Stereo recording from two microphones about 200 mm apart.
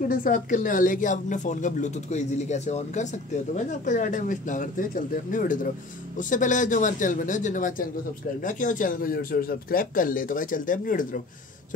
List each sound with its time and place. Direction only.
0.1 s speech: 40° left (ahead or behind)